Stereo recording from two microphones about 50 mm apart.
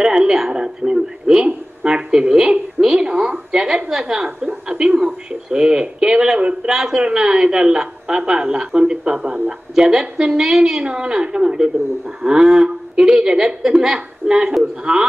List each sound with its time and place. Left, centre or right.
0.0 s a woman's voice: centre